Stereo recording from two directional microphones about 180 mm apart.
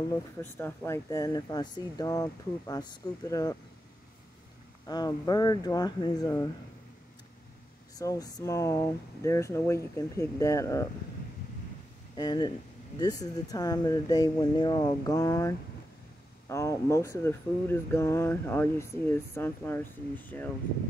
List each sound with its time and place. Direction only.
0.1 s speech: 10° left (ahead or behind)
4.8 s speech: 20° left (ahead or behind)
7.9 s speech: 20° left (ahead or behind)
12.2 s speech: 25° left (ahead or behind)